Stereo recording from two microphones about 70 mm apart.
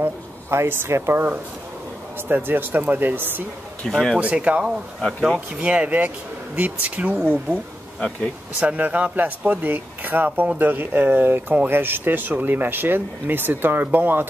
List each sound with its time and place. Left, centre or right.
0.0 s speech: right
3.8 s speech: centre
4.2 s speech: centre
8.5 s speech: right